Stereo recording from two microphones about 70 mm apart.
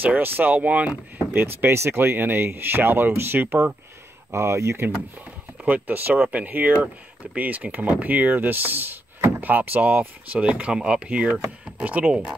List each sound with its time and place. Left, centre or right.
0.0 s speech: right
4.3 s speech: right
5.2 s speech: right